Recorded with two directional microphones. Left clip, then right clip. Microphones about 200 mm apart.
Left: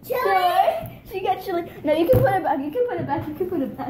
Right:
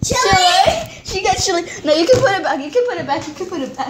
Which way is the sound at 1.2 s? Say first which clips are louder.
Right 7 dB; 35° right (ahead or behind).